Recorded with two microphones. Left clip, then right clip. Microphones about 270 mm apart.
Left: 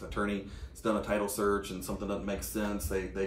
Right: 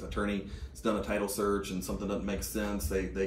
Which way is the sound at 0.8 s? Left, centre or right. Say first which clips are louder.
Left 1 dB; centre.